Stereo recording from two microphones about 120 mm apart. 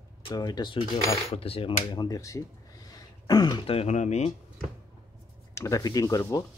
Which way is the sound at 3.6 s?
55° left (ahead or behind).